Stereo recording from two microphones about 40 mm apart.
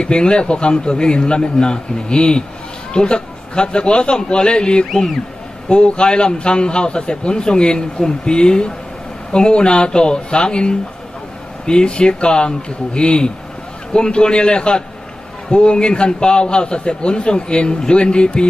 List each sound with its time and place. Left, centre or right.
0.0 s a man's voice: left